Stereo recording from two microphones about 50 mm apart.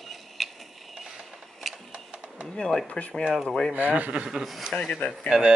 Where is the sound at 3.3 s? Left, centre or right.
Centre.